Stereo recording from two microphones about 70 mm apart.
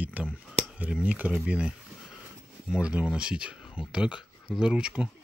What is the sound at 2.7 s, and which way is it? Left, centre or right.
Speech, centre.